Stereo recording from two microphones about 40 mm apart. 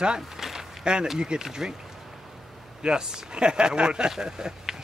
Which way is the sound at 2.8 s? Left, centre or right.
Centre.